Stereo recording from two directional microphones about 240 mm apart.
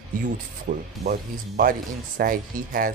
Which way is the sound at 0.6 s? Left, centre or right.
Right.